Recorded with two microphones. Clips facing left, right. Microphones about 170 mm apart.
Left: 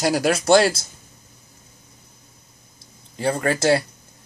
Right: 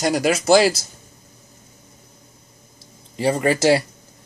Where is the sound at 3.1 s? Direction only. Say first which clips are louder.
Right 3 dB; 10° right (ahead or behind).